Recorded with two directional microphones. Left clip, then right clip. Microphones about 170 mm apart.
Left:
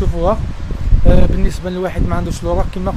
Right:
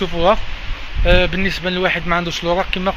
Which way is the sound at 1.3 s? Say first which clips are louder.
Right 5 dB; 15° left (ahead or behind).